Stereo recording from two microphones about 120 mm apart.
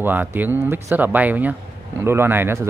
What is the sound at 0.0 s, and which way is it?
Speech, 15° right (ahead or behind).